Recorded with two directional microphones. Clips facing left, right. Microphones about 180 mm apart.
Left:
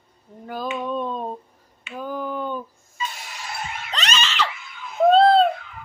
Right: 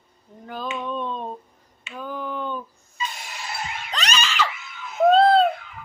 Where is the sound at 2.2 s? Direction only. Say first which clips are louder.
Left 2 dB; 40° left (ahead or behind).